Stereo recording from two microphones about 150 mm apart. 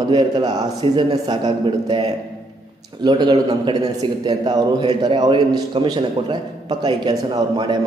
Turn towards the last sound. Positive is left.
turn(degrees=-30)  # may be behind; listen again after turning